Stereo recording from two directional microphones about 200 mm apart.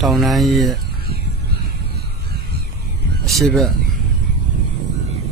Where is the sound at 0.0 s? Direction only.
Centre (ahead or behind).